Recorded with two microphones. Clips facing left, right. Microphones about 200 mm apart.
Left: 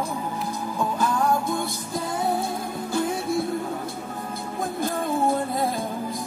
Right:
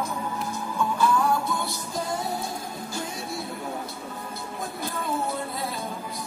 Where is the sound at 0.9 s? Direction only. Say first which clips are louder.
Even; 45° left (ahead or behind).